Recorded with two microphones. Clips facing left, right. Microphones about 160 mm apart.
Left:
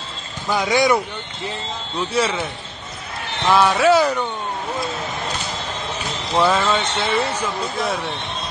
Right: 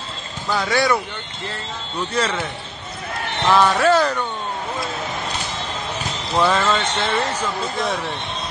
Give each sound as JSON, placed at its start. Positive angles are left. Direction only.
{"t": 0.5, "sound": "speech", "side_deg": 15}
{"t": 3.4, "sound": "speech", "side_deg": 5}
{"t": 6.3, "sound": "a man's voice", "side_deg": 10}